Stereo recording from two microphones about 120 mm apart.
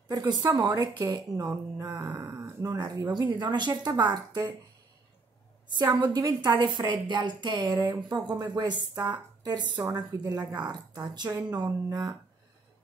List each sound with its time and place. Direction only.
0.3 s speech: 30° right (ahead or behind)
5.8 s speech: 35° right (ahead or behind)